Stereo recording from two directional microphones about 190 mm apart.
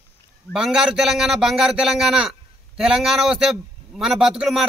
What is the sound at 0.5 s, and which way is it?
A man's voice, 5° right (ahead or behind).